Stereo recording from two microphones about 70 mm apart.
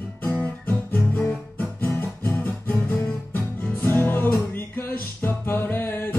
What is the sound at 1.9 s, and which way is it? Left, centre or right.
Music, left.